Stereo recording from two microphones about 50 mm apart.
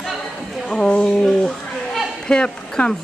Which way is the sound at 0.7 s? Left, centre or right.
Centre.